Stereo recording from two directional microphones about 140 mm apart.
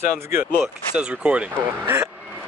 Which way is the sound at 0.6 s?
10° right (ahead or behind).